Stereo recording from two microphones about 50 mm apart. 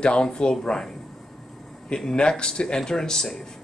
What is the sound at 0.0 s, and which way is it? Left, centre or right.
Speech, centre.